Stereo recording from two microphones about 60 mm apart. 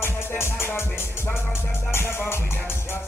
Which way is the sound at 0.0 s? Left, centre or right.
Left.